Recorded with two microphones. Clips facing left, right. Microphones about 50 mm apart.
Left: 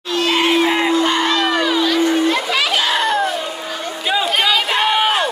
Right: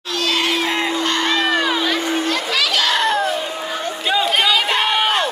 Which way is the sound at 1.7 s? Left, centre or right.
Centre.